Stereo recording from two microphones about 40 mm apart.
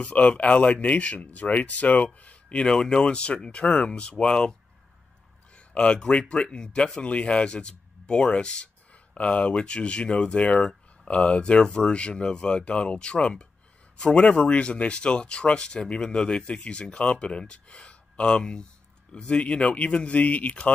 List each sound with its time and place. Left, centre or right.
0.0 s speech: left
2.1 s a sound: left
2.6 s speech: centre
5.9 s speech: left